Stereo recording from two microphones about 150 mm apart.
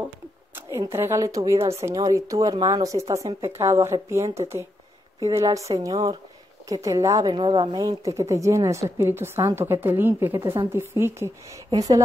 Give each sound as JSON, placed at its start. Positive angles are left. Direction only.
{"t": 0.7, "sound": "a woman's voice", "side_deg": -20}